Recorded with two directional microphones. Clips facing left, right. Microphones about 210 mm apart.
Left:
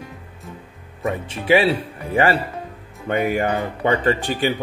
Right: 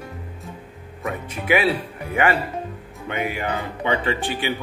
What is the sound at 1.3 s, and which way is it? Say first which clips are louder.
Speech: left 4 dB; 30° left (ahead or behind).